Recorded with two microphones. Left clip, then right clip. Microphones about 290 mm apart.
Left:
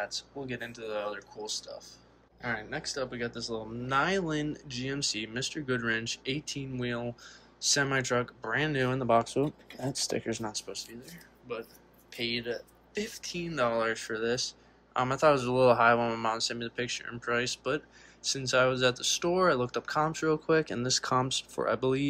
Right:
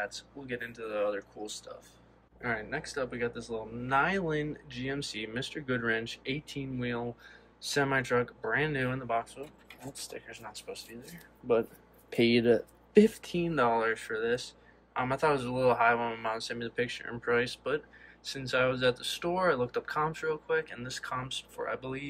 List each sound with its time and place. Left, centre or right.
0.0 s speech: centre
2.4 s speech: centre
12.1 s speech: centre